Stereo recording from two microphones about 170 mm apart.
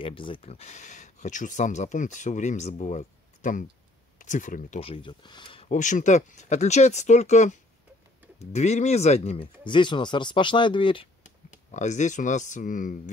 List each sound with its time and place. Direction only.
0.0 s speech: 30° left (ahead or behind); by 4.7 s 50° left (ahead or behind)
4.7 s speech: 35° left (ahead or behind)
11.5 s speech: 45° left (ahead or behind)